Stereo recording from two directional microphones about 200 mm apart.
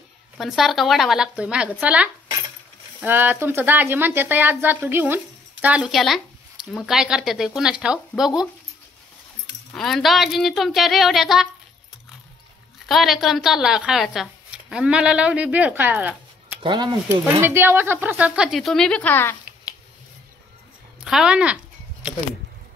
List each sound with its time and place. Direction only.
0.4 s speech: centre (ahead or behind)
9.7 s speech: centre (ahead or behind)
12.8 s speech: centre (ahead or behind)
16.6 s speech: 20° right (ahead or behind); by 19.7 s 10° left (ahead or behind)
21.0 s speech: 5° right (ahead or behind)